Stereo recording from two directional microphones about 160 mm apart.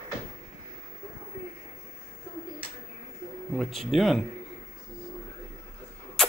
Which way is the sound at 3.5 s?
Centre (ahead or behind).